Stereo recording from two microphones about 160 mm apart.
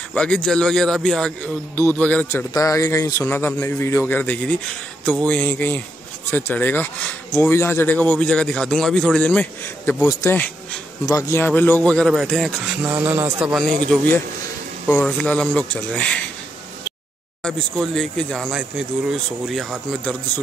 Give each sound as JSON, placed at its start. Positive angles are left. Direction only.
{"t": 0.1, "sound": "a man's voice", "side_deg": 5}
{"t": 2.5, "sound": "a man's voice", "side_deg": 20}
{"t": 11.1, "sound": "a man's voice", "side_deg": 20}
{"t": 12.8, "sound": "a man's voice", "side_deg": -15}
{"t": 17.4, "sound": "speech", "side_deg": 5}